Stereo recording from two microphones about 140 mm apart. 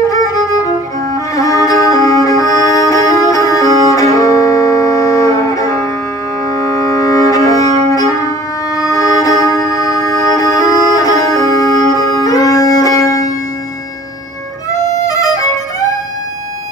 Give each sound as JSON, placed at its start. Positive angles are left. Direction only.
{"t": 1.1, "sound": "music", "side_deg": 25}
{"t": 6.8, "sound": "cello", "side_deg": 25}
{"t": 8.8, "sound": "music", "side_deg": 25}
{"t": 15.0, "sound": "music", "side_deg": 25}